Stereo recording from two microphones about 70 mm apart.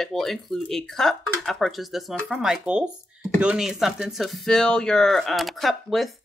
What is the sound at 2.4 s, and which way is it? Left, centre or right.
Speech, centre.